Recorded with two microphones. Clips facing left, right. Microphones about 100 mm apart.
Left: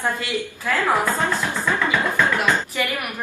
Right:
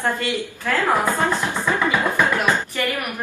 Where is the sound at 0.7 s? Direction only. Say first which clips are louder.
Right 1 dB; 15° right (ahead or behind).